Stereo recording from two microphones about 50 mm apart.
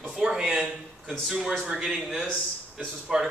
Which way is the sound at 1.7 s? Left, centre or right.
Centre.